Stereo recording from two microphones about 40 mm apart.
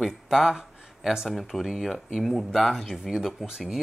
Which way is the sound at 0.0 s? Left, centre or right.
Centre.